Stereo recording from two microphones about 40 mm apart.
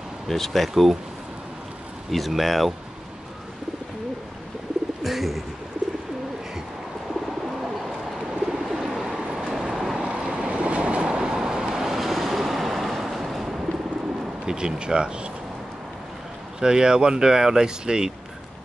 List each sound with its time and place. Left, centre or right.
0.3 s speech: centre
2.0 s speech: centre
5.0 s speech: centre
8.4 s bird: centre
9.4 s vehicle: centre
10.0 s vehicle: right; by 13.6 s centre
14.4 s speech: centre
16.5 s speech: centre